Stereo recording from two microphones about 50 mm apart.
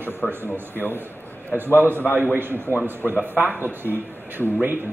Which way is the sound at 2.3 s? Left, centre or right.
Right.